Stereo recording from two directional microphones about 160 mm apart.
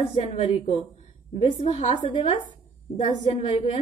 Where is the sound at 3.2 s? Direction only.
35° left (ahead or behind).